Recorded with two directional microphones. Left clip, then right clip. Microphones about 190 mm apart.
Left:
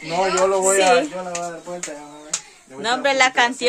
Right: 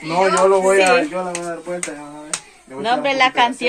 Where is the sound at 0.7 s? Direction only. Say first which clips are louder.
Right 2 dB; 15° left (ahead or behind).